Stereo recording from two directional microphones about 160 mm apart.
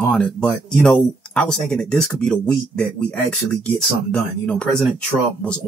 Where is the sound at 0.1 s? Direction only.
5° left (ahead or behind).